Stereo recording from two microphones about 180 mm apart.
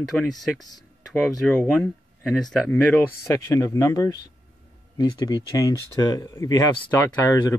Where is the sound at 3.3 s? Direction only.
15° left (ahead or behind).